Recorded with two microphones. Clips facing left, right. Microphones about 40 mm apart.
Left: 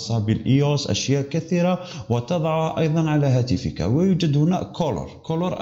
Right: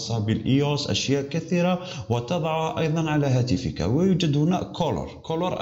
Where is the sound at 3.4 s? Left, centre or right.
Centre.